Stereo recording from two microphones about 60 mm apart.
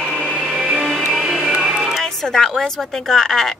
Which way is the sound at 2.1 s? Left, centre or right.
Centre.